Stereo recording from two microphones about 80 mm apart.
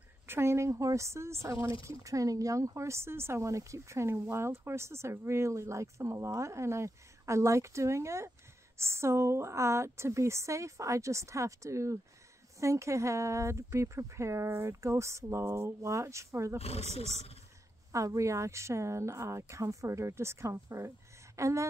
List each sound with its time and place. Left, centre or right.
0.3 s speech: right
17.9 s speech: right